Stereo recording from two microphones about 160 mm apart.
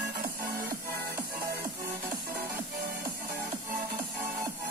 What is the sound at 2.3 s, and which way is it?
Music, 15° right (ahead or behind).